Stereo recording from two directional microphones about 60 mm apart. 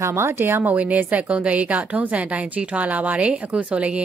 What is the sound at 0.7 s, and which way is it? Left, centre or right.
A woman's voice, right.